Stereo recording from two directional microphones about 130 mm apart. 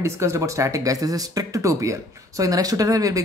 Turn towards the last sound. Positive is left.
turn(degrees=-25)  # may be behind; listen again after turning